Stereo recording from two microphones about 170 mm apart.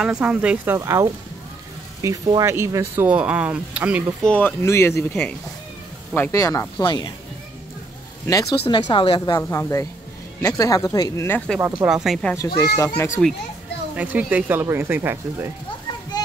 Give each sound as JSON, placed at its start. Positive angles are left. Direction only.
{"t": 0.0, "sound": "speech", "side_deg": -5}
{"t": 0.7, "sound": "speech", "side_deg": -15}
{"t": 4.2, "sound": "speech", "side_deg": 10}
{"t": 8.3, "sound": "speech", "side_deg": 20}
{"t": 11.6, "sound": "speech", "side_deg": -5}
{"t": 12.4, "sound": "speech", "side_deg": 20}
{"t": 13.9, "sound": "speech", "side_deg": -10}